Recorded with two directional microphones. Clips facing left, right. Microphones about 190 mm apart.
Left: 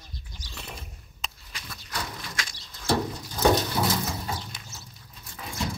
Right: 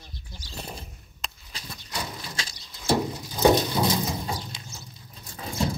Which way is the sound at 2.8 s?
10° right (ahead or behind).